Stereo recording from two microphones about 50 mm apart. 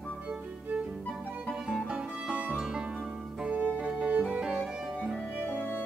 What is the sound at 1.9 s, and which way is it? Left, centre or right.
Music, right.